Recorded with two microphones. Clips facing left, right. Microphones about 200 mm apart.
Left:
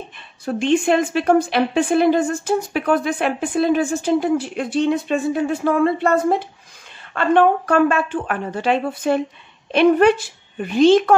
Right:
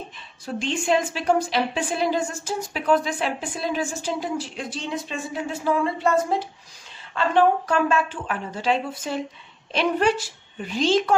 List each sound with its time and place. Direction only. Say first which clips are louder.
0.5 s a woman's voice: left 6 dB; 60° left (ahead or behind)